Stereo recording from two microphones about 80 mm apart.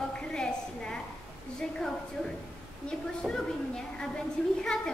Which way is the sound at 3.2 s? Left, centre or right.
Centre.